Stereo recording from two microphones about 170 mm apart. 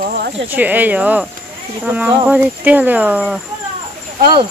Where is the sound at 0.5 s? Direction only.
10° right (ahead or behind).